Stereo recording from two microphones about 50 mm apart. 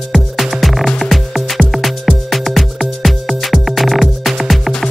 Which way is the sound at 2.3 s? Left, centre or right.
Centre.